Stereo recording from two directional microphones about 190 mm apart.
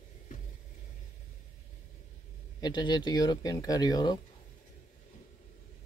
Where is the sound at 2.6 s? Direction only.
25° left (ahead or behind).